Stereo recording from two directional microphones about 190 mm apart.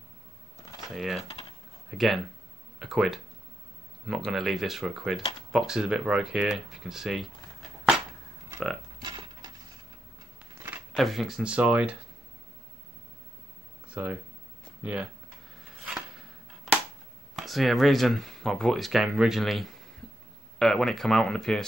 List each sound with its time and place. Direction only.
0.8 s speech: centre (ahead or behind)
9.0 s cutlery: 20° right (ahead or behind)
10.9 s speech: centre (ahead or behind)
13.8 s a sound: 5° right (ahead or behind)
14.8 s speech: 10° right (ahead or behind)
17.4 s speech: centre (ahead or behind)